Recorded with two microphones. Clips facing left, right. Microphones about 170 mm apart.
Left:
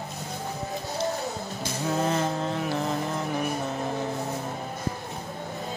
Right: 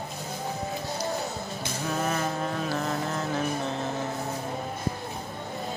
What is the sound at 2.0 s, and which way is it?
Vehicle, 25° left (ahead or behind).